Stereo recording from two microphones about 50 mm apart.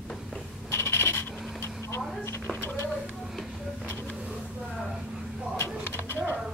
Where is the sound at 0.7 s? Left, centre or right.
Left.